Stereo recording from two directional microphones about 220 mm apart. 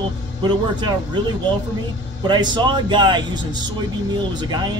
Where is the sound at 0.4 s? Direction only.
20° right (ahead or behind).